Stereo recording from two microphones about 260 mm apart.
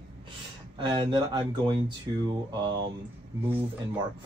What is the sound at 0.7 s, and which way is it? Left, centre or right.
Speech, centre.